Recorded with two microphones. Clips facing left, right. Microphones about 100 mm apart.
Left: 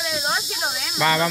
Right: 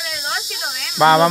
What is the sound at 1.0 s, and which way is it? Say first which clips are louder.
Speech: right 8 dB; 35° right (ahead or behind).